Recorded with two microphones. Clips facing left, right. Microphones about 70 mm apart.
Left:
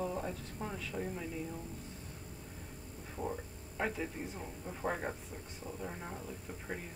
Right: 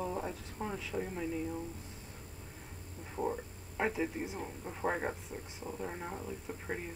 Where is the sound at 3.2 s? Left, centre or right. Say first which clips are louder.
Right 4 dB; centre.